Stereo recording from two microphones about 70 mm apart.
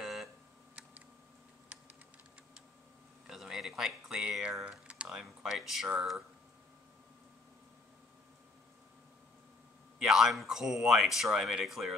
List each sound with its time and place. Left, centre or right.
0.0 s computer keyboard: centre
3.3 s a sound: centre
4.6 s typing: centre
5.0 s speech: centre
9.9 s speech: centre